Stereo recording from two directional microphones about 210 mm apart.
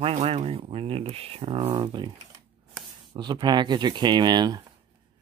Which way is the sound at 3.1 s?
20° right (ahead or behind).